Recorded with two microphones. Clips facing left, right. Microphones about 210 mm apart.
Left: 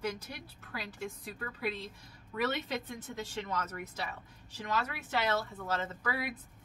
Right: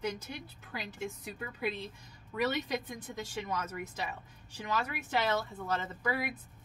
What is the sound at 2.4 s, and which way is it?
A woman's voice, 15° right (ahead or behind).